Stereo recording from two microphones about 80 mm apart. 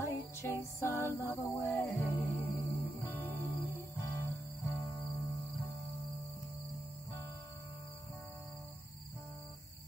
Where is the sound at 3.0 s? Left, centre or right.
Left.